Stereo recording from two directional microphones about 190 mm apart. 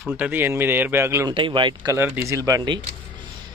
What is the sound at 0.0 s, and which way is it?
Speech, 10° right (ahead or behind).